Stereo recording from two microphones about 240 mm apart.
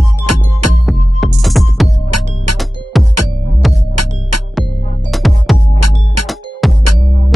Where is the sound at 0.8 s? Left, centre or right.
Centre.